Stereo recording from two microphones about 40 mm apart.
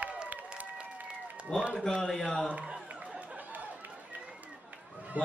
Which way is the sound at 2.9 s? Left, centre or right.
Right.